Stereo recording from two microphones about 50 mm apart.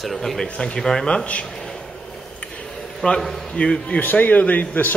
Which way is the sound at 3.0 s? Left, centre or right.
Centre.